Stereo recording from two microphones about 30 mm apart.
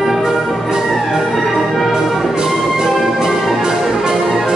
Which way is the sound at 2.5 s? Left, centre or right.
Centre.